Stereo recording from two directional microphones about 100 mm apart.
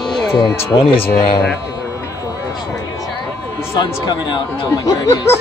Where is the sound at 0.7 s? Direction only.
75° left (ahead or behind).